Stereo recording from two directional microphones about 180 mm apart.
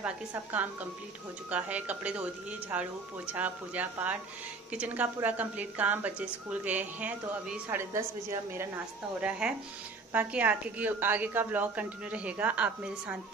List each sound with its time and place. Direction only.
1.5 s a woman's voice: 10° right (ahead or behind)